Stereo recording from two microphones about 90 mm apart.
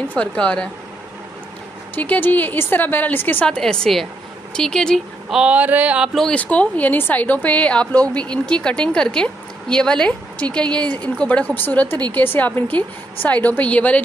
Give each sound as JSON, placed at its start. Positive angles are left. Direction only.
{"t": 0.1, "sound": "a woman's voice", "side_deg": 10}
{"t": 2.0, "sound": "a woman's voice", "side_deg": 20}
{"t": 3.4, "sound": "a woman's voice", "side_deg": 5}
{"t": 5.3, "sound": "a sound", "side_deg": -10}
{"t": 6.1, "sound": "a woman's voice", "side_deg": 10}